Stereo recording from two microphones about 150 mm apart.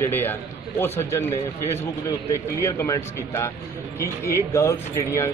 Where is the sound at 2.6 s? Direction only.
20° left (ahead or behind).